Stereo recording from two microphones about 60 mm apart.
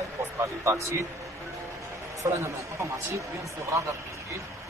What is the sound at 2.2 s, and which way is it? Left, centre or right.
Speech, right.